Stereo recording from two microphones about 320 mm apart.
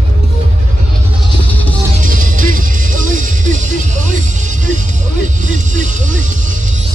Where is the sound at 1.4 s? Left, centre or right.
Centre.